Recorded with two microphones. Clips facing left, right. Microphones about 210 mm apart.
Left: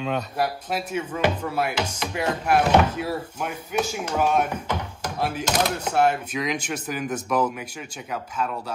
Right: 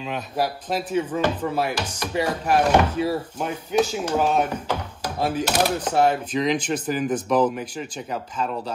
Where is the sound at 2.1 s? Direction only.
10° right (ahead or behind).